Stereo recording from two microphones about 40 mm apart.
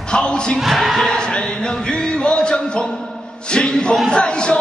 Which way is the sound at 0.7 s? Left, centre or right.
Centre.